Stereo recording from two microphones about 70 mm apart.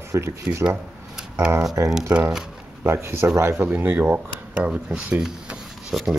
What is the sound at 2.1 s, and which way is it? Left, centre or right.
Speech, centre.